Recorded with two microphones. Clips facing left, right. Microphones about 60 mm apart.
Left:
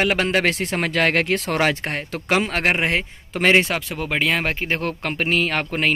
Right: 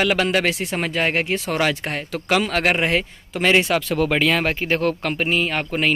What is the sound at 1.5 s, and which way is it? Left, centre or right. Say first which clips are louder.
Speech: left 1 dB; left.